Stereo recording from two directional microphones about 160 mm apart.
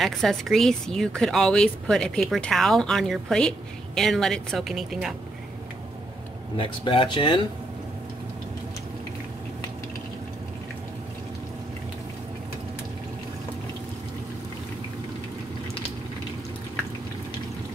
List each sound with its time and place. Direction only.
0.0 s speech: centre (ahead or behind)
6.5 s speech: 35° left (ahead or behind)